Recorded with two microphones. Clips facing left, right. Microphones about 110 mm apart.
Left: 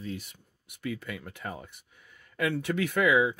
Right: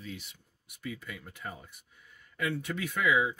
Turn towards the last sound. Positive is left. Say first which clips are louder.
# left 4 dB
turn(degrees=65)  # may be behind; listen again after turning